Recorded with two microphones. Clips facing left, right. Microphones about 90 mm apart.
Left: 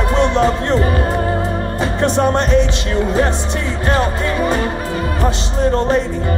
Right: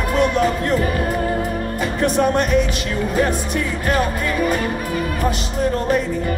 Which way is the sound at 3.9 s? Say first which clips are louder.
Left 3 dB; 30° left (ahead or behind).